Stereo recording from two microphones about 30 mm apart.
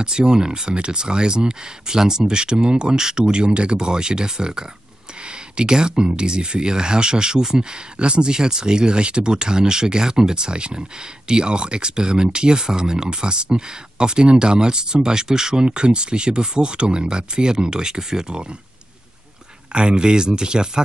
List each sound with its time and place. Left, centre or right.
0.0 s speech: right
19.7 s speech: right